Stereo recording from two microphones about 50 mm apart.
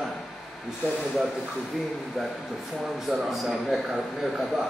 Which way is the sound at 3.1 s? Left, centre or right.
Centre.